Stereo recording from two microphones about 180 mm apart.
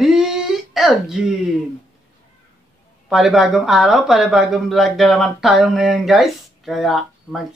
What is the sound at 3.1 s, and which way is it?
Speech, centre (ahead or behind).